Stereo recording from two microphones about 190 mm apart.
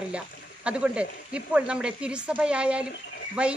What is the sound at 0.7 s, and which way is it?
Speech, 5° right (ahead or behind).